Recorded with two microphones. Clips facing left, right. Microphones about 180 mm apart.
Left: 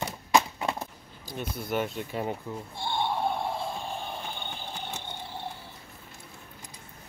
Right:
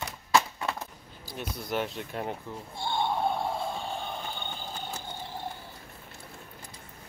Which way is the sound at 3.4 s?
Centre (ahead or behind).